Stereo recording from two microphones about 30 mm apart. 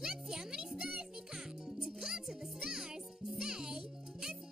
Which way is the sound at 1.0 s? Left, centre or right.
Centre.